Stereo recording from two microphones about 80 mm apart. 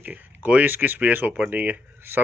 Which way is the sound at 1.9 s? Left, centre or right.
Right.